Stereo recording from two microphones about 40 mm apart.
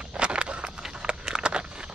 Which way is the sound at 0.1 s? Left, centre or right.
Right.